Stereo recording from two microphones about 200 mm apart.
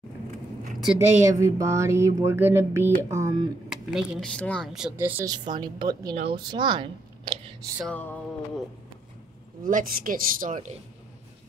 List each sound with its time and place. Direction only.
0.9 s speech: 15° right (ahead or behind)
3.6 s speech: 5° right (ahead or behind)
5.6 s speech: 20° right (ahead or behind)
7.8 s a sound: 10° left (ahead or behind)
9.6 s speech: 45° right (ahead or behind)